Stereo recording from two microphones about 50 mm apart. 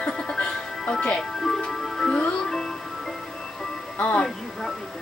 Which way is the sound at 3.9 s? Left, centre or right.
Left.